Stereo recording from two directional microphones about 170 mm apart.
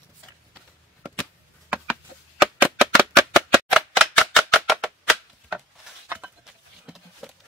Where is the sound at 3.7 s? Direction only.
Centre (ahead or behind).